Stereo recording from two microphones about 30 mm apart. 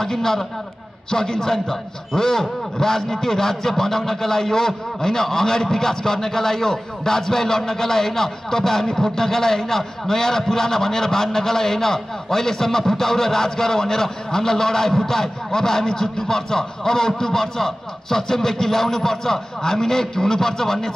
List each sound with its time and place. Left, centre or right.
0.0 s a man's voice: centre